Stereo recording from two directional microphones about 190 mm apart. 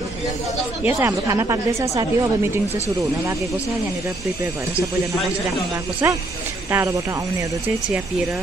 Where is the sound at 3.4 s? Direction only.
Centre (ahead or behind).